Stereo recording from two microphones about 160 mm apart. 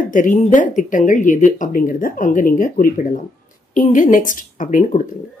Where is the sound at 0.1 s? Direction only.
55° left (ahead or behind).